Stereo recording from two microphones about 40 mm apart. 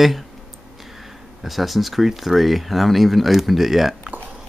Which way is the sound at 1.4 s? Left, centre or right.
Centre.